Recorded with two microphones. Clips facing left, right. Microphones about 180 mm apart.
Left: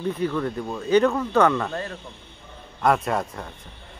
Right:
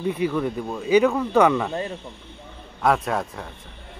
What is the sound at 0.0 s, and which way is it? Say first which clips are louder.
Speech: right 2 dB; 10° right (ahead or behind).